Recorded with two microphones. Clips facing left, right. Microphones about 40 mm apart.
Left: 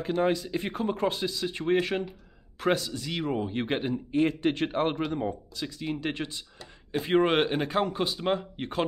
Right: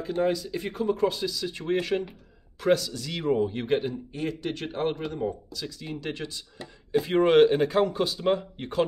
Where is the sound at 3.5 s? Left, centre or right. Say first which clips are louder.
Right 2 dB; left.